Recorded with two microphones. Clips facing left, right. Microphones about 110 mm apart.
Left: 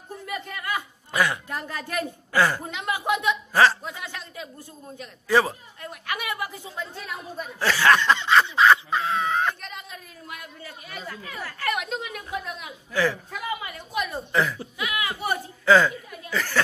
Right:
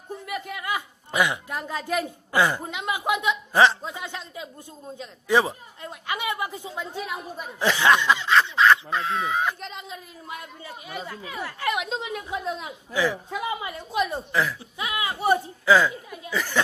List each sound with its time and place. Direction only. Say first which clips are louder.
0.3 s a woman's voice: even; 10° right (ahead or behind)
8.2 s speech: left 1 dB; centre (ahead or behind)
9.6 s speech: right 3 dB; 25° right (ahead or behind)
12.9 s speech: even; 15° right (ahead or behind)
14.3 s speech: left 5 dB; centre (ahead or behind)
14.8 s speech: right 2 dB; 25° right (ahead or behind)
15.6 s a woman's voice: left 4 dB; 5° right (ahead or behind)